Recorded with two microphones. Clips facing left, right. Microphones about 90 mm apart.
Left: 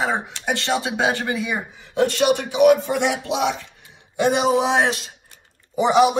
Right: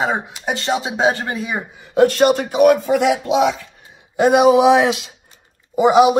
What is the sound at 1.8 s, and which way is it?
A man's voice, 50° right (ahead or behind).